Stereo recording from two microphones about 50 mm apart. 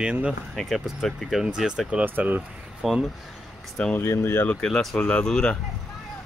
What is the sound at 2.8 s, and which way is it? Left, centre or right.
Speech, centre.